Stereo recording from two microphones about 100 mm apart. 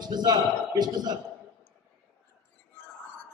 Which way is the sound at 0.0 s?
45° right (ahead or behind).